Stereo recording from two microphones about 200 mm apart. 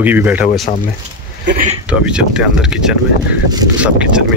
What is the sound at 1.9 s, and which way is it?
A man's voice, 5° right (ahead or behind).